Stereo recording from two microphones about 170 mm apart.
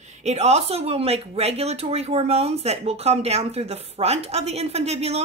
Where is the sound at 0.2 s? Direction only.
40° right (ahead or behind).